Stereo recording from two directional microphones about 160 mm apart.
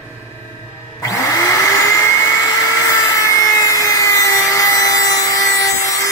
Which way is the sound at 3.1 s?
20° left (ahead or behind).